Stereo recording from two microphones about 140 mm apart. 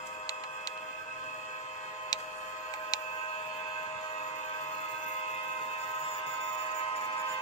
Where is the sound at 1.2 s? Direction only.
55° left (ahead or behind).